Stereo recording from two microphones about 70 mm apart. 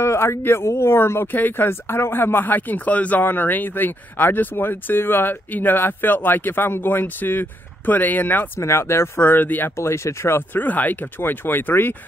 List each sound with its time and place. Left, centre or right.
0.0 s speech: left
8.5 s speech: left
9.8 s speech: left